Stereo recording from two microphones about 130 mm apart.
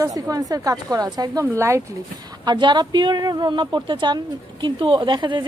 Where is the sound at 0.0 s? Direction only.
25° right (ahead or behind).